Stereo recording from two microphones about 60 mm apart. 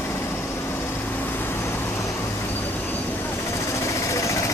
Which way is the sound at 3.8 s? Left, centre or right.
Left.